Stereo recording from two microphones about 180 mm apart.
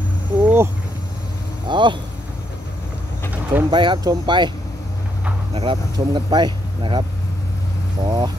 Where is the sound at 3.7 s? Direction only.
25° right (ahead or behind).